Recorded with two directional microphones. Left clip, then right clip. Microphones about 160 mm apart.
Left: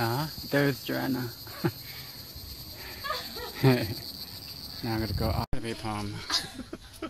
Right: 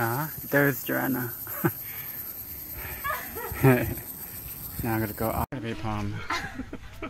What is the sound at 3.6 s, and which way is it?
Speech, 5° right (ahead or behind).